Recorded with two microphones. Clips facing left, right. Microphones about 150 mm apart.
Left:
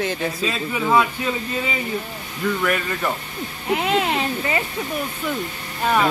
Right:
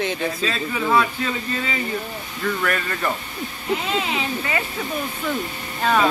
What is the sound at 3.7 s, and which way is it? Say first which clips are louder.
Speech: left 3 dB; 60° left (ahead or behind).